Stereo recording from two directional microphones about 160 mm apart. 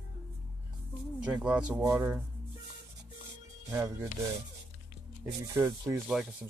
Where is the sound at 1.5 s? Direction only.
5° right (ahead or behind).